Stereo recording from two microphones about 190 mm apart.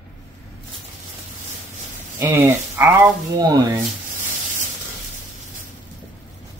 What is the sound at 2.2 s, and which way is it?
Speech, 10° right (ahead or behind).